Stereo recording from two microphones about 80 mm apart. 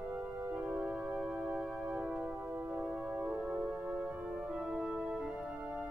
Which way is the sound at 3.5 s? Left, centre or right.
Centre.